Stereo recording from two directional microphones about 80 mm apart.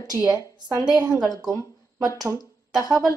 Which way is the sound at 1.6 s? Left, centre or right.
Right.